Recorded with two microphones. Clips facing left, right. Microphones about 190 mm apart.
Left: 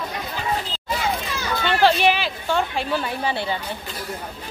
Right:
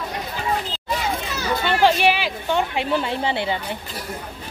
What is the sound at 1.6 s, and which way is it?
Speech, 10° right (ahead or behind).